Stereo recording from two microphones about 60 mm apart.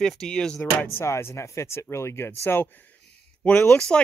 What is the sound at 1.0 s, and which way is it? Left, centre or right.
Speech, left.